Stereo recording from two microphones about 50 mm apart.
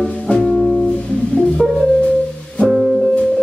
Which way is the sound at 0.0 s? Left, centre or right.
Centre.